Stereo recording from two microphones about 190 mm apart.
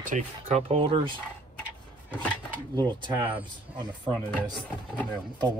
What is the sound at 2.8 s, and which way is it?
Speech, 20° right (ahead or behind).